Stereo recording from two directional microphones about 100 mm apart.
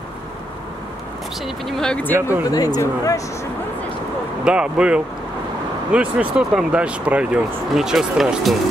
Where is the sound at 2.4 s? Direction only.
40° left (ahead or behind).